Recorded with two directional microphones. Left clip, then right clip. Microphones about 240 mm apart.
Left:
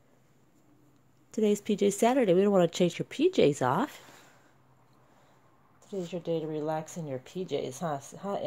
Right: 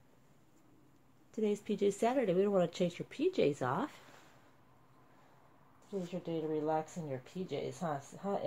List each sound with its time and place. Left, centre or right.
1.3 s speech: left
6.2 s speech: left